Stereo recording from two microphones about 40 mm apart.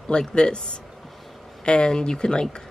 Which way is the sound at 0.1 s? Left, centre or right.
Centre.